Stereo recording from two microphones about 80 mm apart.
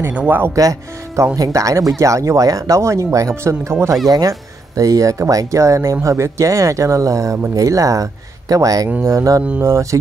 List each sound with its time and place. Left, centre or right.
0.6 s speech: right